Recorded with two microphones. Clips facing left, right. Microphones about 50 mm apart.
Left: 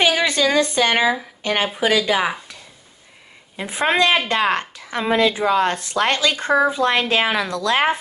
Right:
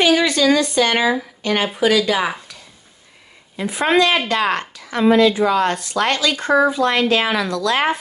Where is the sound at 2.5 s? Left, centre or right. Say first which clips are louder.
Even; left.